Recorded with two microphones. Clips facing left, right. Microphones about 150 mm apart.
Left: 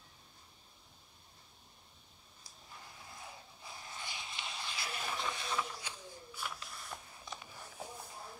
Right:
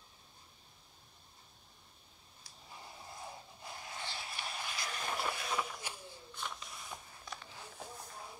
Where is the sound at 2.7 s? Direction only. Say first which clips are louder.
Right 3 dB; 20° right (ahead or behind).